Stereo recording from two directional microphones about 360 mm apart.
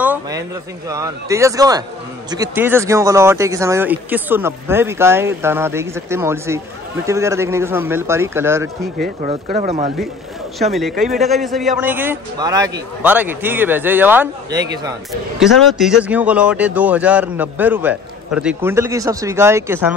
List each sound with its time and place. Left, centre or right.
0.0 s speech: centre
8.9 s speech: right
10.6 s speech: centre